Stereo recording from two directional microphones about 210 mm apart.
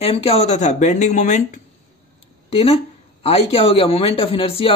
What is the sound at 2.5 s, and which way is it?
Speech, 25° left (ahead or behind).